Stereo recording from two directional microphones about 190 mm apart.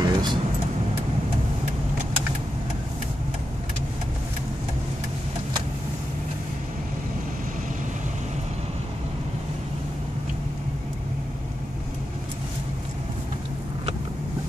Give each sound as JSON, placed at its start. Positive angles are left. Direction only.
{"t": 0.0, "sound": "vehicle", "side_deg": -25}